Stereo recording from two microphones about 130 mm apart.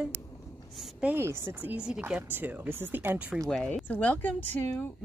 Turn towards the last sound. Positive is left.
turn(degrees=15)  # may be behind; listen again after turning